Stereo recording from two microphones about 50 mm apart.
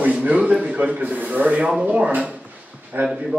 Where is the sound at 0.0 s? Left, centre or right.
Right.